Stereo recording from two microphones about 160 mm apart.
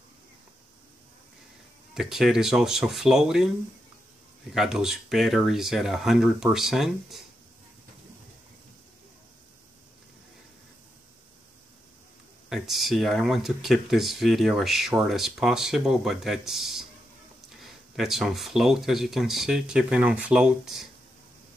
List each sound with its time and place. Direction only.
2.0 s speech: 5° right (ahead or behind)
12.4 s speech: centre (ahead or behind)